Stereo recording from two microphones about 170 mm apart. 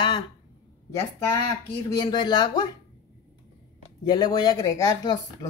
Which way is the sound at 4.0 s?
25° left (ahead or behind).